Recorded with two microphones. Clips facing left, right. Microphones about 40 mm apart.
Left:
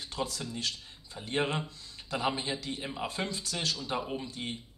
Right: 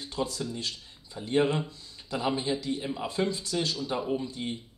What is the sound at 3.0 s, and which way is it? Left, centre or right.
Speech, left.